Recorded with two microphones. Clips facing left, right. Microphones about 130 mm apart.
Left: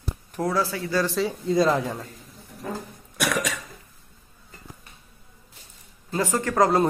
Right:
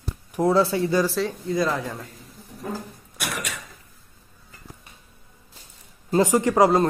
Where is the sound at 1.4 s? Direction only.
25° left (ahead or behind).